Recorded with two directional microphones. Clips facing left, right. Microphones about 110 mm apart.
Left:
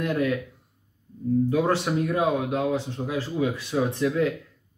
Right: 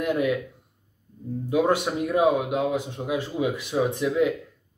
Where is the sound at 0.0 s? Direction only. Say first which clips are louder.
Right 1 dB; 15° right (ahead or behind).